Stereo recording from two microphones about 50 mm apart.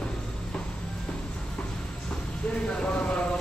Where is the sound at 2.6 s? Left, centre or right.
Left.